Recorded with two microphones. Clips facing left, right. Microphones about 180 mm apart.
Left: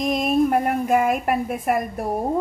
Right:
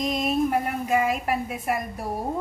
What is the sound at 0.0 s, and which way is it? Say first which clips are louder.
A woman's voice: left 4 dB; 50° left (ahead or behind).